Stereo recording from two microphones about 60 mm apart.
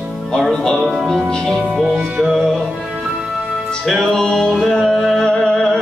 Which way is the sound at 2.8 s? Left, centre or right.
Centre.